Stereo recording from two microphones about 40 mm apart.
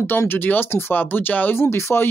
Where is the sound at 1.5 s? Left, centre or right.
Left.